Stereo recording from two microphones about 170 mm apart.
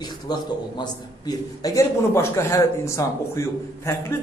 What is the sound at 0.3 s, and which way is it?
A man's voice, 25° left (ahead or behind).